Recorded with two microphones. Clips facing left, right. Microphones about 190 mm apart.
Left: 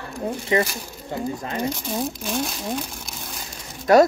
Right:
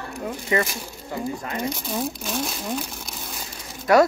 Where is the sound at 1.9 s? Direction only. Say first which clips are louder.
Left 1 dB; centre (ahead or behind).